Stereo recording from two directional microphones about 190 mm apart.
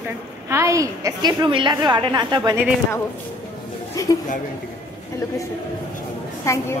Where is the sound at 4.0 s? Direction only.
15° left (ahead or behind).